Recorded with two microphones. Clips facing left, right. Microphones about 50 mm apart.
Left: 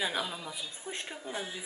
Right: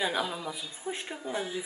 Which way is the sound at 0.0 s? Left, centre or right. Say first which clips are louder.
Right 3 dB; centre.